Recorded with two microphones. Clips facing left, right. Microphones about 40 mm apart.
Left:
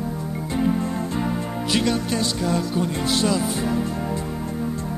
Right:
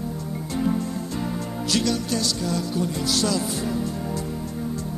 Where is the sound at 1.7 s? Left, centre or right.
Left.